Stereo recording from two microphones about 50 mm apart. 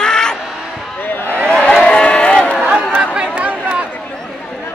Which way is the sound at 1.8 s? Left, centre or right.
Left.